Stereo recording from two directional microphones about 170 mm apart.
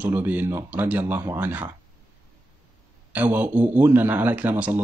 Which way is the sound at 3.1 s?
10° right (ahead or behind).